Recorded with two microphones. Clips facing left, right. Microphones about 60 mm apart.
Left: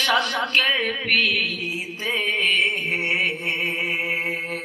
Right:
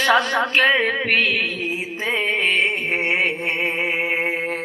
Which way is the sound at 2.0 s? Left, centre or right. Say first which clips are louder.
Right 2 dB; right.